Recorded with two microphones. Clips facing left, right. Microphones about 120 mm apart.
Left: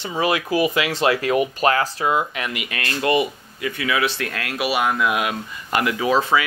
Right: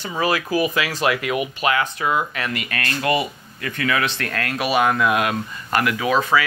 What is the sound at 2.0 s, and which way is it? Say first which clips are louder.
Speech: left 1 dB; 20° left (ahead or behind).